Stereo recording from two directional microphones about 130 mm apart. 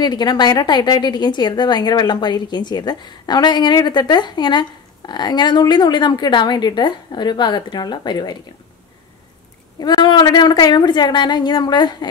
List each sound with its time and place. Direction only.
0.0 s a woman's voice: 35° left (ahead or behind)
9.8 s a woman's voice: 30° left (ahead or behind)